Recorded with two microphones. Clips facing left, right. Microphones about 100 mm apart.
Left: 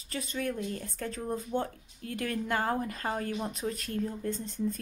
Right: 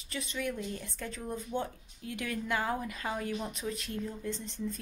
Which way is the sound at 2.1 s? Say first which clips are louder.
Left 2 dB; 40° left (ahead or behind).